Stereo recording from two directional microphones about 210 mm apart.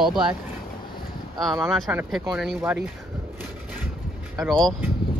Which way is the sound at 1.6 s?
Centre (ahead or behind).